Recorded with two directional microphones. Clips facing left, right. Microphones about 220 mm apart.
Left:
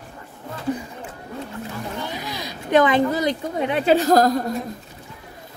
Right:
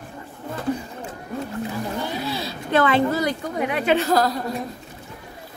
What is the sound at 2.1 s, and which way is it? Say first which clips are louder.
Speech: right 4 dB; 15° left (ahead or behind).